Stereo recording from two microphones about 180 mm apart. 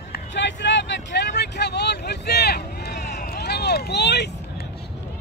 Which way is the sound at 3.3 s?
65° left (ahead or behind).